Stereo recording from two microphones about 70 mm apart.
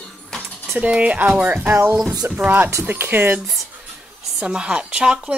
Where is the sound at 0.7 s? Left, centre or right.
Centre.